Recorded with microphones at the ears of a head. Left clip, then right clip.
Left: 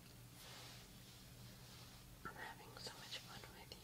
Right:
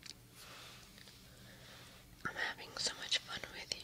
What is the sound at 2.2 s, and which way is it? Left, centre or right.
Whispering, right.